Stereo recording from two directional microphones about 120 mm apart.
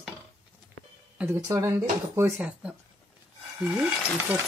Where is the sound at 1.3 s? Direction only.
30° right (ahead or behind).